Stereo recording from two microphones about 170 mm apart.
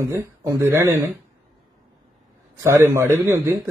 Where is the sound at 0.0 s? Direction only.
15° right (ahead or behind).